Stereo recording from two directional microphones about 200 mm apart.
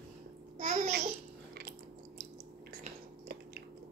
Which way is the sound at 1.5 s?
55° right (ahead or behind).